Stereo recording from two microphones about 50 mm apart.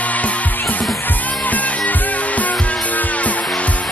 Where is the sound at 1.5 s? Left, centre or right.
Left.